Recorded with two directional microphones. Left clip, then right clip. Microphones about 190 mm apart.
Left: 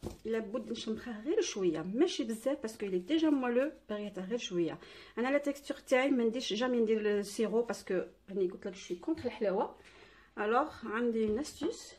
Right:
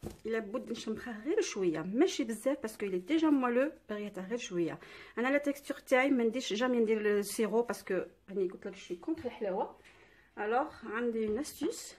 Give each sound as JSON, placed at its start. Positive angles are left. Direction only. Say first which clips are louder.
{"t": 0.2, "sound": "speech", "louder": "even", "side_deg": -15}